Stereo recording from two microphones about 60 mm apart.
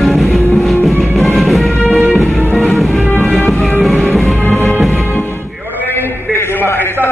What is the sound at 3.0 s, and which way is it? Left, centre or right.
Music, left.